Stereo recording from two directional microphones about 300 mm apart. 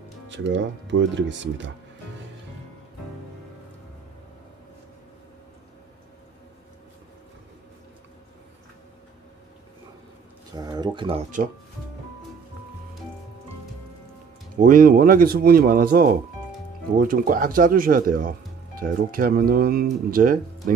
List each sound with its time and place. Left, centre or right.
0.3 s speech: right
10.5 s speech: centre
14.6 s speech: right